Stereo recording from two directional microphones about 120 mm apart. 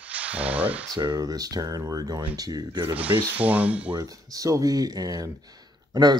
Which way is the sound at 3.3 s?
10° right (ahead or behind).